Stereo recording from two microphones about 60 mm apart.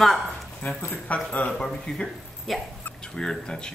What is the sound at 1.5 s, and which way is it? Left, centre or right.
A woman's voice, centre.